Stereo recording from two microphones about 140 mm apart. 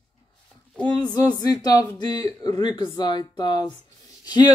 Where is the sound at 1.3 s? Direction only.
30° left (ahead or behind).